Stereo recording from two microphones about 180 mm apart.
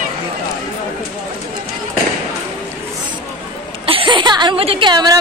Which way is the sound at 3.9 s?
30° right (ahead or behind).